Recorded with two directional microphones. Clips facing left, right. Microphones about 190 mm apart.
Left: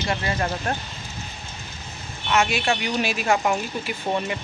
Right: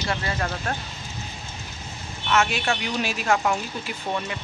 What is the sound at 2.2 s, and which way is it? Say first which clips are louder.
Speech: left 1 dB; 15° left (ahead or behind).